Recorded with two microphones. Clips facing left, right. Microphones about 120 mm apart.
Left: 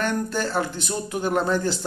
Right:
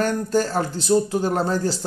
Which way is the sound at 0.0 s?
40° right (ahead or behind).